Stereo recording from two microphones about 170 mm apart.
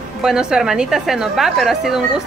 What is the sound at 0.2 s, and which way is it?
A woman's voice, 5° right (ahead or behind).